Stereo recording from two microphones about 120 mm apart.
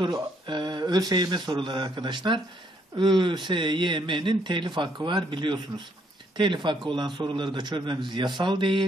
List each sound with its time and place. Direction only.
0.0 s speech: 40° right (ahead or behind)